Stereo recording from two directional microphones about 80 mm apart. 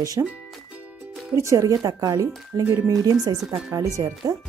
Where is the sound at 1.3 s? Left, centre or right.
Right.